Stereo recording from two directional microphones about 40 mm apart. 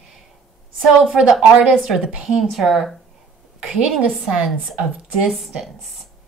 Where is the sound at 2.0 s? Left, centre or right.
Right.